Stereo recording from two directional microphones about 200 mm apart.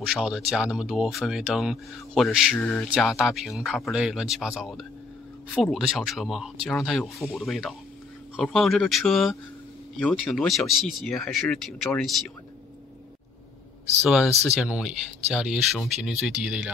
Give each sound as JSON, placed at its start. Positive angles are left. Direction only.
{"t": 0.0, "sound": "speech", "side_deg": -5}
{"t": 14.0, "sound": "speech", "side_deg": 0}